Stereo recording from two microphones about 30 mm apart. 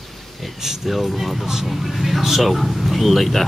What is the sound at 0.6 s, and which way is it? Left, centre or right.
Speech, centre.